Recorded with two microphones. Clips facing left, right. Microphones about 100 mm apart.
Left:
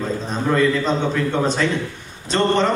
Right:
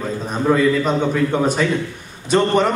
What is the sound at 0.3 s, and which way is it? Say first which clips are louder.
A man's voice: right 3 dB; 10° right (ahead or behind).